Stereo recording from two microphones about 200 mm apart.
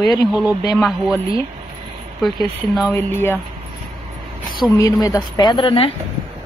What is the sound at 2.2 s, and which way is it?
Speech, centre (ahead or behind).